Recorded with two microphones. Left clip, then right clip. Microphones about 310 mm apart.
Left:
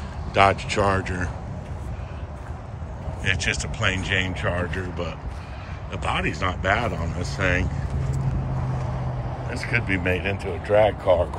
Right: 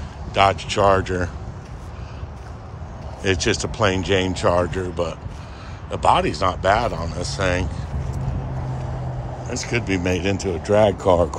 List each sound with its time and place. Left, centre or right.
0.3 s speech: centre
3.2 s speech: centre
9.5 s speech: centre
10.3 s speech: right